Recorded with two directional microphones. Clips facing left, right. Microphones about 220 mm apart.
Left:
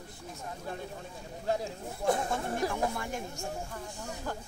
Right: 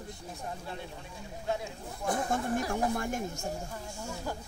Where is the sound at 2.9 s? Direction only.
45° right (ahead or behind).